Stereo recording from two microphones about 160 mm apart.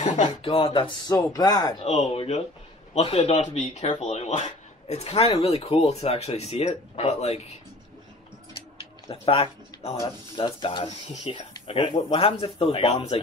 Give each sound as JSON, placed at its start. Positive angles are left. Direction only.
{"t": 0.0, "sound": "speech", "side_deg": 50}
{"t": 1.9, "sound": "speech", "side_deg": 40}
{"t": 8.5, "sound": "typing", "side_deg": 35}
{"t": 10.0, "sound": "speech", "side_deg": 30}